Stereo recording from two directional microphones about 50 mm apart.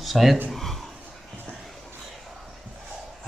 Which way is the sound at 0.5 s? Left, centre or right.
Centre.